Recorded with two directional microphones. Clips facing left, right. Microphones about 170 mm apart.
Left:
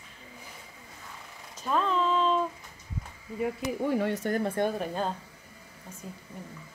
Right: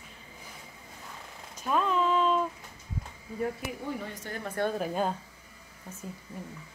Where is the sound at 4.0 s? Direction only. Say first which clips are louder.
Left 11 dB; 70° left (ahead or behind).